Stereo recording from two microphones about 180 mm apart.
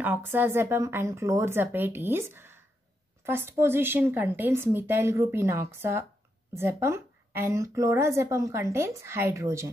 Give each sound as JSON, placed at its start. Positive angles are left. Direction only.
{"t": 0.0, "sound": "speech", "side_deg": -10}